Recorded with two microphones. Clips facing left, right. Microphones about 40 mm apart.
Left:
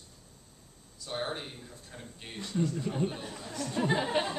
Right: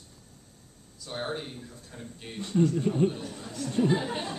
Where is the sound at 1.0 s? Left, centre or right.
Centre.